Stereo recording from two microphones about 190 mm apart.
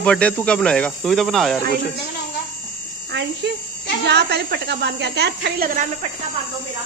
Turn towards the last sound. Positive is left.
turn(degrees=-50)  # may be behind; listen again after turning